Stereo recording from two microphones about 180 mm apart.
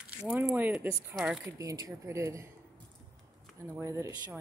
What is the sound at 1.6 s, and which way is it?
Speech, 20° right (ahead or behind).